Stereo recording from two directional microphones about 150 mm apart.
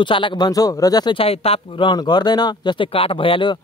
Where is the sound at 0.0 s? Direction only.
35° left (ahead or behind).